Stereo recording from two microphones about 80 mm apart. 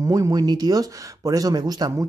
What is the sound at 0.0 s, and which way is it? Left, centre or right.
Speech, right.